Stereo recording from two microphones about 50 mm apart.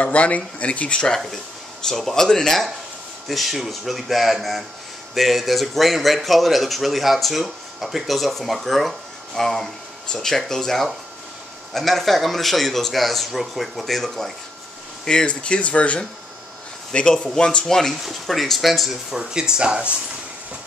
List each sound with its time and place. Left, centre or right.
0.0 s speech: left
1.0 s speech: centre
15.0 s speech: centre
17.6 s speech: centre